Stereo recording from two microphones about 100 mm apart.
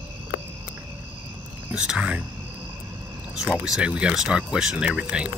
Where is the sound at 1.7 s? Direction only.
10° right (ahead or behind).